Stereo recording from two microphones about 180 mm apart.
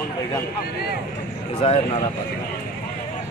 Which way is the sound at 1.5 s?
35° left (ahead or behind).